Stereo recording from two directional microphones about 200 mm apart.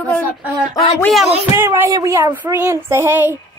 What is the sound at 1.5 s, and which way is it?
Speech, 10° right (ahead or behind).